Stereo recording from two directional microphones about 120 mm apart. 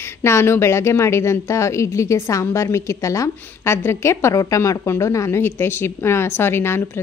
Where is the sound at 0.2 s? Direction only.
20° left (ahead or behind).